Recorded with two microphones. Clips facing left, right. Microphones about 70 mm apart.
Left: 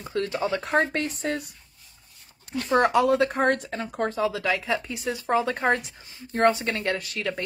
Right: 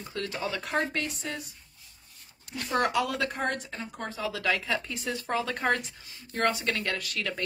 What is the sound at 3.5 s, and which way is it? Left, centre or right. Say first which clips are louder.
Speech: left 6 dB; left.